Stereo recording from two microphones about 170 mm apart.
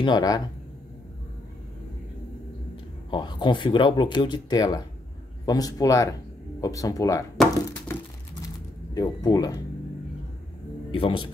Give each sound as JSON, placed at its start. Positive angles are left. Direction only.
{"t": 0.0, "sound": "speech", "side_deg": 25}
{"t": 3.1, "sound": "speech", "side_deg": 25}
{"t": 8.5, "sound": "a sound", "side_deg": 20}
{"t": 10.9, "sound": "speech", "side_deg": 30}